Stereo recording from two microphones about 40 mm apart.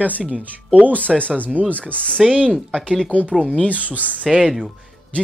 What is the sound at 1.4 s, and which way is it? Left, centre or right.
Speech, right.